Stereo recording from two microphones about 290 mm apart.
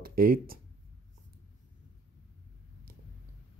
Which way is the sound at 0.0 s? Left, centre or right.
Right.